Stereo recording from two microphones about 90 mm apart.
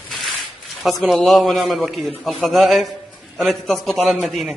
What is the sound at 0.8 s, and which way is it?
A man's voice, centre (ahead or behind).